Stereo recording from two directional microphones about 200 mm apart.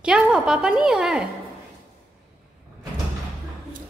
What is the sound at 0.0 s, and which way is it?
Speech, 5° right (ahead or behind).